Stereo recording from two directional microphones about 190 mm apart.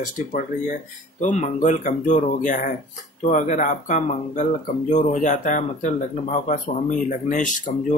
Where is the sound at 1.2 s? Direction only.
40° left (ahead or behind).